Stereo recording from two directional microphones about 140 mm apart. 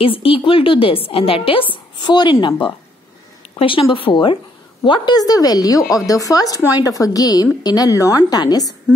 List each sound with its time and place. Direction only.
0.0 s a woman's voice: 40° left (ahead or behind)
3.5 s a woman's voice: 40° left (ahead or behind)